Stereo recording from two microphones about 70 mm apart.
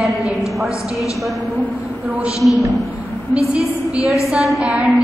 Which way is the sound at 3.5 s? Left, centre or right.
Centre.